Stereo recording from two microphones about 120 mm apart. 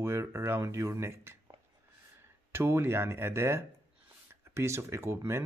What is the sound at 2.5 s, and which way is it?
Speech, 20° right (ahead or behind).